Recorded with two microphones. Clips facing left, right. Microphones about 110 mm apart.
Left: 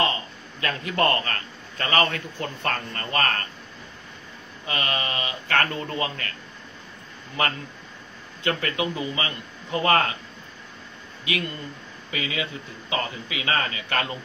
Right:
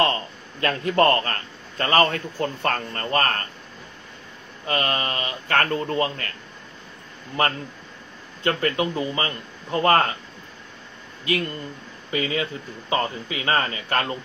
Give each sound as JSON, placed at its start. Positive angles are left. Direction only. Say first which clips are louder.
{"t": 0.0, "sound": "a man's voice", "louder": "right 3 dB", "side_deg": -45}
{"t": 4.6, "sound": "speech", "louder": "right 4 dB", "side_deg": -40}
{"t": 7.4, "sound": "speech", "louder": "right 3 dB", "side_deg": -35}
{"t": 11.2, "sound": "speech", "louder": "right 4 dB", "side_deg": -40}